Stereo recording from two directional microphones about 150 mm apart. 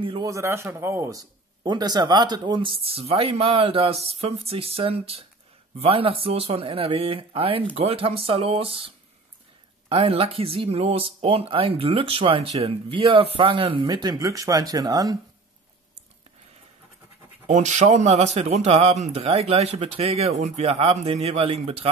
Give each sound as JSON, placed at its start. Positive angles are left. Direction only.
{"t": 0.0, "sound": "a man's voice", "side_deg": -35}
{"t": 0.3, "sound": "a man's voice", "side_deg": -20}
{"t": 13.8, "sound": "speech", "side_deg": -25}
{"t": 17.5, "sound": "speech", "side_deg": -50}